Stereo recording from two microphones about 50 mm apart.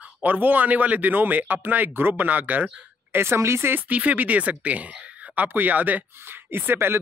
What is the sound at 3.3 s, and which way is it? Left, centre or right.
Speech, right.